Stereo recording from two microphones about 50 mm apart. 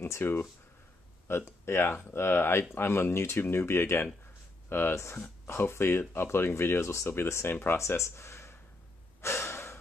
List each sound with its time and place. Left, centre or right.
0.1 s speech: left
7.7 s speech: left
9.2 s gasp: left